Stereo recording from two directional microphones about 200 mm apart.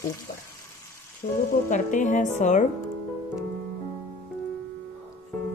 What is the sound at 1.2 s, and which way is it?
Speech, 40° left (ahead or behind).